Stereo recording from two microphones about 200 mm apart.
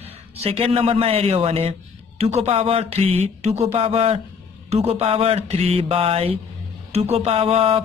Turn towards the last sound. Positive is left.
turn(degrees=-30)  # may be behind; listen again after turning